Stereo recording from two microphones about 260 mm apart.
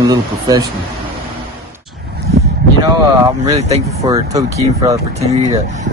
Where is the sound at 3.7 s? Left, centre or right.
Centre.